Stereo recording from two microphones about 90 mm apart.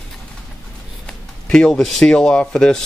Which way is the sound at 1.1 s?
10° left (ahead or behind).